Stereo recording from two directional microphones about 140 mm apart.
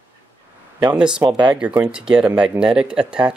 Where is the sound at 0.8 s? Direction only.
5° right (ahead or behind).